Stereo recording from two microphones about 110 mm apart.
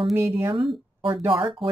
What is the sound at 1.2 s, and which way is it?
Speech, 60° right (ahead or behind).